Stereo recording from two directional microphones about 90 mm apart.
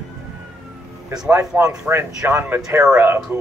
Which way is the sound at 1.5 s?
15° right (ahead or behind).